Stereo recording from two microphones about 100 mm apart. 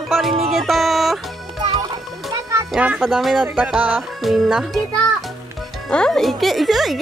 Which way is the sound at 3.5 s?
10° right (ahead or behind).